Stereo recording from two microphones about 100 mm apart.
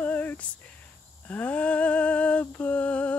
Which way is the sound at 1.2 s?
15° left (ahead or behind).